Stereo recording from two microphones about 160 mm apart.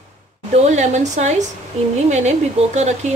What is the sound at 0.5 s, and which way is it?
A woman's voice, 45° right (ahead or behind).